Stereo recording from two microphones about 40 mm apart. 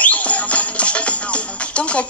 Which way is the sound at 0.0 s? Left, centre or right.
Left.